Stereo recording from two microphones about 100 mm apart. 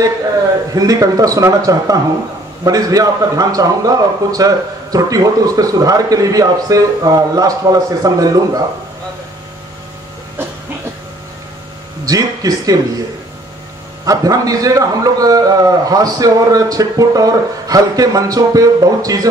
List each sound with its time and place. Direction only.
0.7 s a man's voice: 35° right (ahead or behind)
12.1 s a man's voice: 35° right (ahead or behind)
14.0 s a man's voice: 35° right (ahead or behind)